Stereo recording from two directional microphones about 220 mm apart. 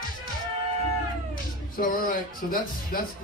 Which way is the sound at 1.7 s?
40° left (ahead or behind).